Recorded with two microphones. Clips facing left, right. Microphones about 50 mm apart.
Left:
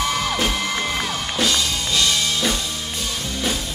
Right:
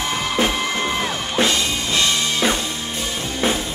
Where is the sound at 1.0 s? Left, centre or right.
Right.